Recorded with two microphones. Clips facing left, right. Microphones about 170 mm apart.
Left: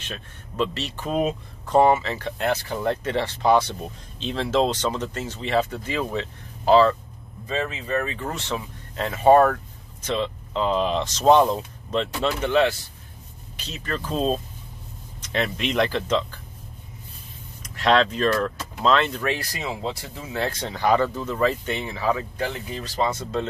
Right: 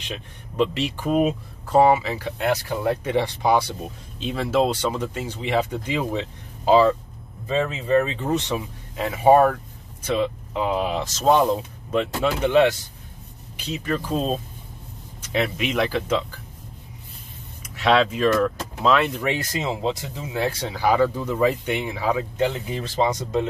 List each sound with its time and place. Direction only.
0.0 s speech: 15° right (ahead or behind)
7.4 s speech: 30° right (ahead or behind); by 16.3 s 5° right (ahead or behind)
17.7 s speech: 5° right (ahead or behind)
19.2 s speech: 20° right (ahead or behind)